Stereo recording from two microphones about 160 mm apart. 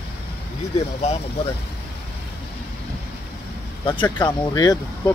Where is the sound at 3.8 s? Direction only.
30° left (ahead or behind).